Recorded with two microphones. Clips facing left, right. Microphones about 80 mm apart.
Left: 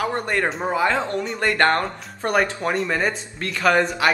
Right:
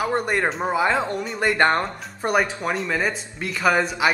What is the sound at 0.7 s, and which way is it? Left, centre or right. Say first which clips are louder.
Speech: left 1 dB; centre.